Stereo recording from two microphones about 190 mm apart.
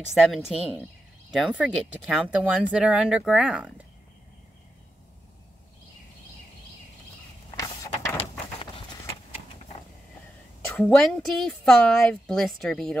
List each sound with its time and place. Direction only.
0.1 s speech: centre (ahead or behind)
7.5 s vehicle: 20° left (ahead or behind)
8.2 s a sound: 30° left (ahead or behind)
10.7 s speech: 5° left (ahead or behind)